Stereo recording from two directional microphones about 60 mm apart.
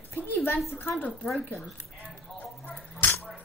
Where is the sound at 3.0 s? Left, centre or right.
Left.